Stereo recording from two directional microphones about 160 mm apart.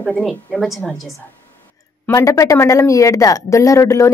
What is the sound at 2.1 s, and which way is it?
Speech, 20° left (ahead or behind).